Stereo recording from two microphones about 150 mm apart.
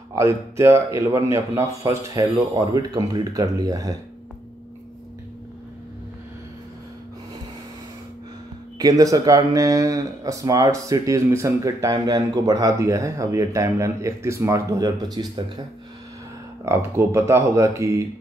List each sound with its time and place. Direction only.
0.1 s speech: 20° right (ahead or behind)
8.7 s speech: 25° right (ahead or behind)
16.6 s speech: 20° right (ahead or behind)